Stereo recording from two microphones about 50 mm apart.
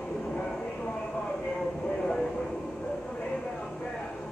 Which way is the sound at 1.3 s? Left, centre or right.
Centre.